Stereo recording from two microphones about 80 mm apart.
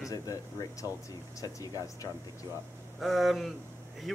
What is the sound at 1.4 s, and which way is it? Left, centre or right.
Speech, left.